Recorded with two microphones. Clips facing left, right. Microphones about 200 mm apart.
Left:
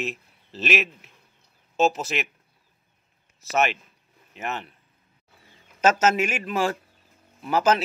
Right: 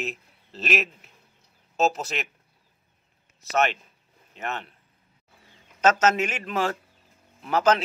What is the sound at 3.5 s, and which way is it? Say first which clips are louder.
A man's voice: even; 10° left (ahead or behind).